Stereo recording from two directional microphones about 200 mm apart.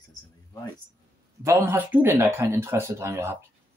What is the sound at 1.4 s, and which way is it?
Speech, 10° right (ahead or behind).